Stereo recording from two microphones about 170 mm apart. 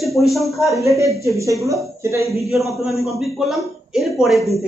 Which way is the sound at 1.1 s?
20° right (ahead or behind).